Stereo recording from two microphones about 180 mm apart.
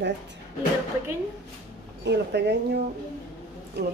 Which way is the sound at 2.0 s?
65° right (ahead or behind).